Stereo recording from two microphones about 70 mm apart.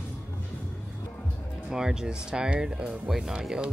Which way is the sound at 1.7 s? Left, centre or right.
Centre.